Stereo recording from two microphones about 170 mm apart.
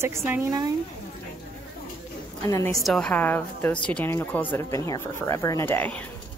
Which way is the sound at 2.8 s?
5° left (ahead or behind).